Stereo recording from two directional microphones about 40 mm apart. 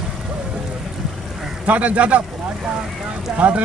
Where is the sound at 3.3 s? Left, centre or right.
Right.